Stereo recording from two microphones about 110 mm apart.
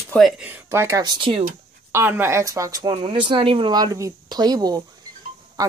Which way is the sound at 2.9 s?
50° right (ahead or behind).